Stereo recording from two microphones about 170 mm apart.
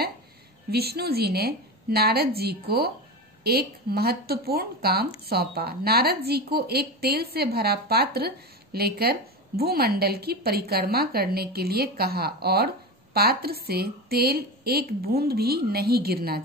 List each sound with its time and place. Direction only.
0.7 s a woman's voice: 70° right (ahead or behind)